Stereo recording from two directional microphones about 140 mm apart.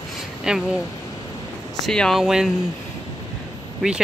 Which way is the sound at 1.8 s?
5° left (ahead or behind).